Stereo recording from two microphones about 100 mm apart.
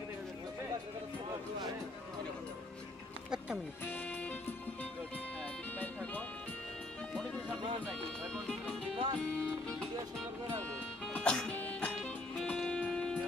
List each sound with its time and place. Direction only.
3.8 s music: 20° left (ahead or behind)
7.8 s music: 5° left (ahead or behind)
8.9 s music: 60° right (ahead or behind)
9.2 s music: 10° left (ahead or behind)